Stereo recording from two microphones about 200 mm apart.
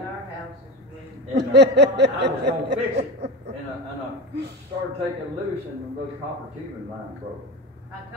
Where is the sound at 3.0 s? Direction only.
55° right (ahead or behind).